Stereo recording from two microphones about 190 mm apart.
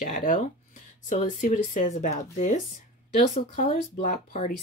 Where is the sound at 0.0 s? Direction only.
45° left (ahead or behind).